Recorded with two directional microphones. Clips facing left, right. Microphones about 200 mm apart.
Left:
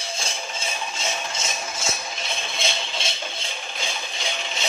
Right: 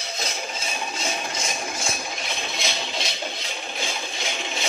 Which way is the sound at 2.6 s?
25° left (ahead or behind).